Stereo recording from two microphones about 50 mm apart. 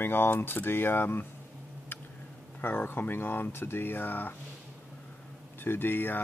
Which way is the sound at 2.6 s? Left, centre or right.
Left.